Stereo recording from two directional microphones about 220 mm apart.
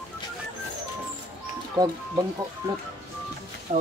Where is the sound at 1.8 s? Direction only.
15° right (ahead or behind).